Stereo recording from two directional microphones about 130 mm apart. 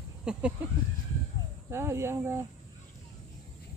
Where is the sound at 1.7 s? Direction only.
20° right (ahead or behind).